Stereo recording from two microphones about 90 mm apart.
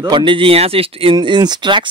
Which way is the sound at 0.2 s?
75° right (ahead or behind).